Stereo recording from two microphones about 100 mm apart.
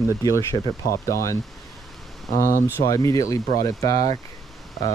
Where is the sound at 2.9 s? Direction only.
35° left (ahead or behind).